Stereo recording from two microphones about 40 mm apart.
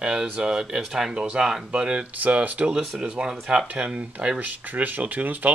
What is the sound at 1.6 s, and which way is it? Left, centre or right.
Speech, right.